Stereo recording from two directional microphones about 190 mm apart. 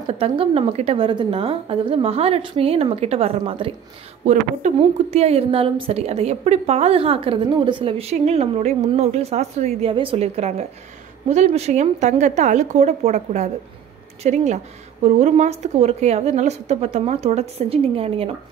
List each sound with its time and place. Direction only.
0.2 s a woman's voice: 30° right (ahead or behind)